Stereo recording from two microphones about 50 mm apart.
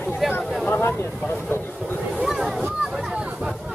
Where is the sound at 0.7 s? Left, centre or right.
Left.